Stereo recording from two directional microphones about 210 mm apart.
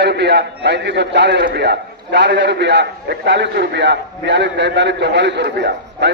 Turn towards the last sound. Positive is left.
turn(degrees=-55)  # may be behind; listen again after turning